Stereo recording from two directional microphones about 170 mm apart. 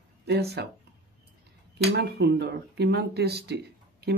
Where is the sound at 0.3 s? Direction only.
75° right (ahead or behind).